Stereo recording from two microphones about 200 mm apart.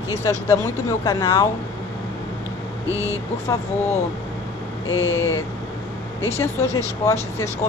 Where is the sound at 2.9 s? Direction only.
15° right (ahead or behind).